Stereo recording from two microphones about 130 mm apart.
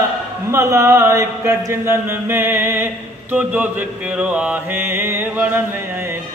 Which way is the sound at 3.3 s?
10° right (ahead or behind).